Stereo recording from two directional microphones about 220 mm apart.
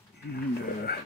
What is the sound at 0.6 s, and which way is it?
Dog, 45° left (ahead or behind).